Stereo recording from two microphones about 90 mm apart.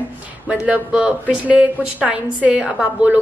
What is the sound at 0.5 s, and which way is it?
A woman's voice, 10° right (ahead or behind).